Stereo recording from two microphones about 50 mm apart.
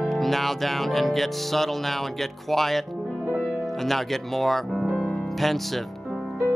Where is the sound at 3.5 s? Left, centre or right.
Centre.